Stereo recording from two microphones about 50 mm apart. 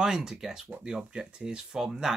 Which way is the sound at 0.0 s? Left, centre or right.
Centre.